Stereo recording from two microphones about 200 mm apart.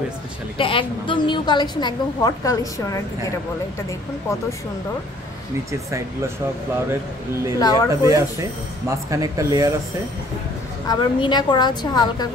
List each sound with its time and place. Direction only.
0.6 s a woman's voice: 25° left (ahead or behind)
5.7 s speech: 15° right (ahead or behind)
7.5 s a woman's voice: 20° left (ahead or behind)
7.9 s speech: 15° right (ahead or behind)
10.9 s a woman's voice: 25° left (ahead or behind)